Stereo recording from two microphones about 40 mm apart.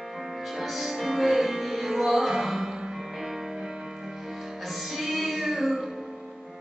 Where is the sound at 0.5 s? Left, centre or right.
Centre.